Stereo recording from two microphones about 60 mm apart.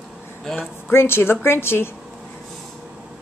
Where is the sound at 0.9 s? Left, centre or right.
Left.